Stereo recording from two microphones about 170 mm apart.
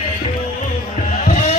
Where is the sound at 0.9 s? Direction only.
40° left (ahead or behind).